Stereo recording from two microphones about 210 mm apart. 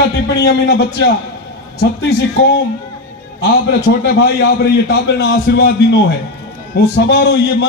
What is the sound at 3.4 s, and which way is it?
Speech, 50° left (ahead or behind).